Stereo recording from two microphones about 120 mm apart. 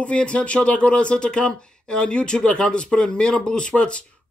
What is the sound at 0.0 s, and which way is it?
Speech, 10° left (ahead or behind).